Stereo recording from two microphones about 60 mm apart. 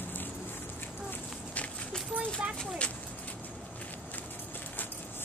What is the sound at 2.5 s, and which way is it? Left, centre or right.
Speech, centre.